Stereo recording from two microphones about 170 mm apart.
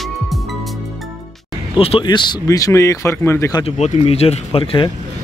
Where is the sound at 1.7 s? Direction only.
35° left (ahead or behind); by 3.6 s 15° left (ahead or behind).